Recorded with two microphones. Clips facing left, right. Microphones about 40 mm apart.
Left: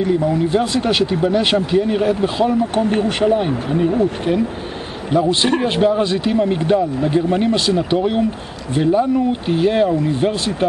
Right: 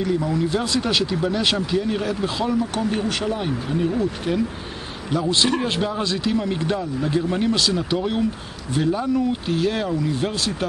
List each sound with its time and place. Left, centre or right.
0.0 s speech: left
5.1 s speech: left